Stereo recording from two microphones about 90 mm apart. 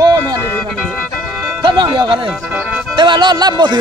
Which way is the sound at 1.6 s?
65° right (ahead or behind).